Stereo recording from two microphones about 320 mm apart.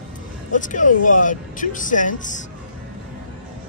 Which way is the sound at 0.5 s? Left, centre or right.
Left.